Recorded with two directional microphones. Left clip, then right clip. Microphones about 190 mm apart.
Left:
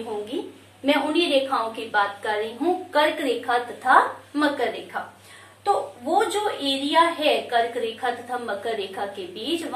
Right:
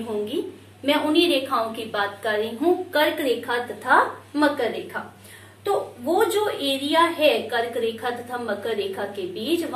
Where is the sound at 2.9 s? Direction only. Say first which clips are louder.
Even; 10° left (ahead or behind).